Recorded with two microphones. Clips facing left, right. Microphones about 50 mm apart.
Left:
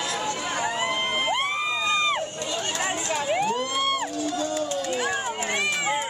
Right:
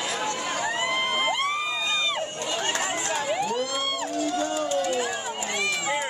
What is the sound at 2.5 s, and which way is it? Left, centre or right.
Chatter, right.